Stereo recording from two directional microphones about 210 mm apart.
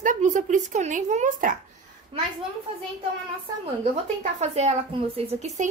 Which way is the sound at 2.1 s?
25° right (ahead or behind).